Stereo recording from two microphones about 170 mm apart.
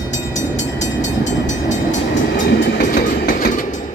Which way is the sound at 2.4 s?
80° left.